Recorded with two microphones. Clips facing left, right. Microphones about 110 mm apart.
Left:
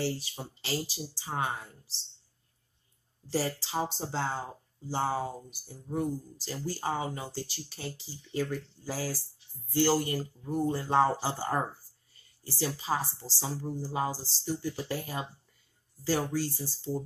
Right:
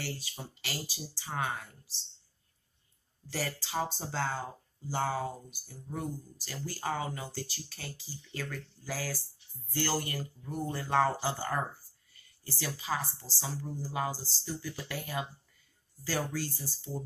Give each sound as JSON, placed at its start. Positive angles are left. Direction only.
{"t": 0.0, "sound": "speech", "side_deg": 25}
{"t": 3.3, "sound": "speech", "side_deg": 25}